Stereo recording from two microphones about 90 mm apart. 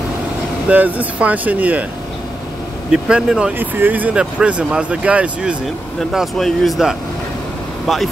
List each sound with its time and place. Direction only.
0.7 s speech: 15° right (ahead or behind)
2.9 s speech: 10° right (ahead or behind)
3.5 s speech: 20° right (ahead or behind)
6.1 s speech: centre (ahead or behind)